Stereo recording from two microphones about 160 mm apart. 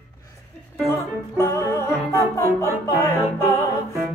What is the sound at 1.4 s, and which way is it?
Music, 15° left (ahead or behind).